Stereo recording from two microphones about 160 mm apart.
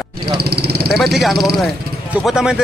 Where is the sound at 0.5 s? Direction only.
80° right.